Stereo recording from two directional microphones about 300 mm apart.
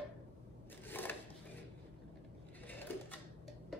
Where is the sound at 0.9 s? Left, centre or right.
Centre.